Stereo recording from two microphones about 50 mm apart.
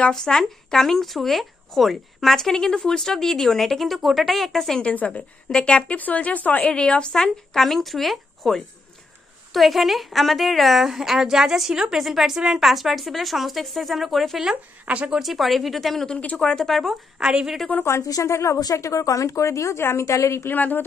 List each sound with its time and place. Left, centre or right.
0.1 s speech: centre
5.0 s a woman's voice: centre
5.9 s speech: left
6.6 s speech: centre
14.9 s a woman's voice: right
15.1 s speech: centre
17.2 s a woman's voice: centre
17.8 s a woman's voice: left
19.8 s a woman's voice: left
20.4 s speech: left